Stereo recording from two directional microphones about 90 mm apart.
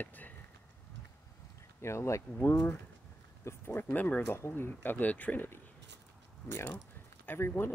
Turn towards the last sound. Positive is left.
turn(degrees=25)  # may be behind; listen again after turning